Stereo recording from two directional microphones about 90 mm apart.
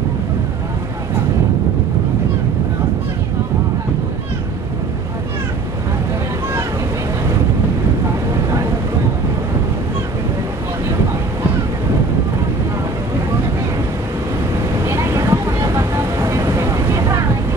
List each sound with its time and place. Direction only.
14.9 s vehicle: 35° right (ahead or behind)